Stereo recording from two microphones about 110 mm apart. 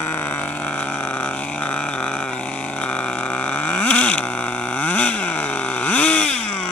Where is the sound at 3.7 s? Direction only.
15° left (ahead or behind).